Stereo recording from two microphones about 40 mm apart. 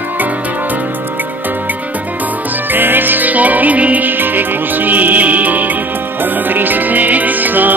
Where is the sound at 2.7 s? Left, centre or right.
Right.